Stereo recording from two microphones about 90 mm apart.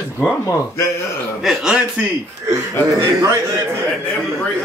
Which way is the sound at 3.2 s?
35° right (ahead or behind).